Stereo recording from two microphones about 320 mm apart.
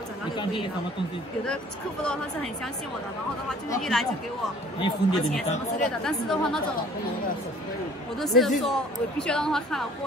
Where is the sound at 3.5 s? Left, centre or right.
Centre.